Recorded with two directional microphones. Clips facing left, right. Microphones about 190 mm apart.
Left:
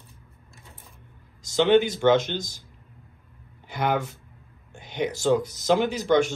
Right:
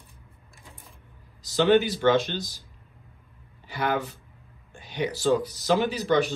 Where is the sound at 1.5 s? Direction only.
20° left (ahead or behind).